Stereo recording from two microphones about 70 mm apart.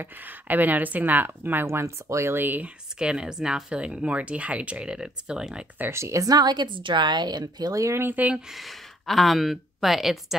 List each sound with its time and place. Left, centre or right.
0.0 s speech: right
3.0 s speech: centre
5.9 s a woman's voice: right
6.2 s a woman's voice: right
7.8 s a woman's voice: right
8.1 s speech: right
8.5 s speech: centre